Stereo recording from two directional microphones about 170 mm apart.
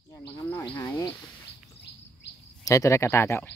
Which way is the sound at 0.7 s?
10° left (ahead or behind).